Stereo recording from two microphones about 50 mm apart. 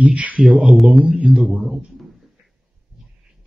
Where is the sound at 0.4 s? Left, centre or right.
Centre.